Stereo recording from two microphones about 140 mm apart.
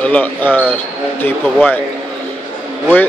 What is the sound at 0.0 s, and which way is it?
A man's voice, 10° left (ahead or behind).